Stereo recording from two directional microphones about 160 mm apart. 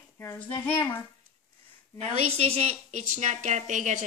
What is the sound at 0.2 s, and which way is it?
Speech, 15° left (ahead or behind).